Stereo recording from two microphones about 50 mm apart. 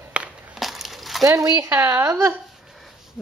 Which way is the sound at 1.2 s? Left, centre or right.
Right.